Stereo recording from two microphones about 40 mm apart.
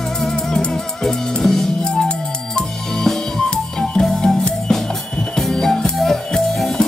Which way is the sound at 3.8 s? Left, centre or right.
Centre.